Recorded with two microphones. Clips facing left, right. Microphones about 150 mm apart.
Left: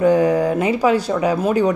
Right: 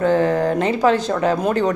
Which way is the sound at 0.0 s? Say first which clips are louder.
Left 2 dB; 10° left (ahead or behind).